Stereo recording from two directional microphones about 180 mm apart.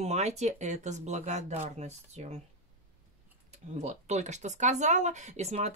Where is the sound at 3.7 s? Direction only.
40° right (ahead or behind).